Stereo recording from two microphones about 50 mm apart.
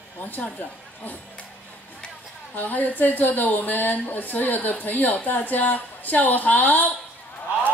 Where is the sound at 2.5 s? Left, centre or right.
Left.